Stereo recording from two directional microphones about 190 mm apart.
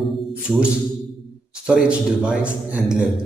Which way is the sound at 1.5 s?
5° right (ahead or behind).